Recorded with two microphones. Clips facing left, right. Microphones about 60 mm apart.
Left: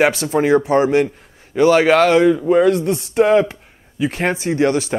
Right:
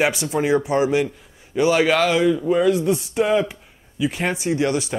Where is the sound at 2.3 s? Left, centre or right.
Left.